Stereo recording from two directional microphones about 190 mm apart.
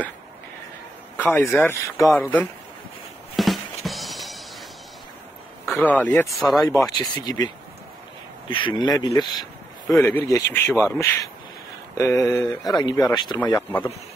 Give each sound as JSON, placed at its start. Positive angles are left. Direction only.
{"t": 1.1, "sound": "a man's voice", "side_deg": 10}
{"t": 3.3, "sound": "music", "side_deg": 0}
{"t": 5.7, "sound": "a man's voice", "side_deg": 10}
{"t": 6.9, "sound": "speech", "side_deg": 20}
{"t": 9.9, "sound": "a man's voice", "side_deg": 10}
{"t": 13.4, "sound": "a man's voice", "side_deg": 10}